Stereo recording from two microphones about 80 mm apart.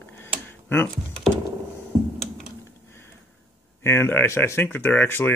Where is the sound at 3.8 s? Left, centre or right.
Left.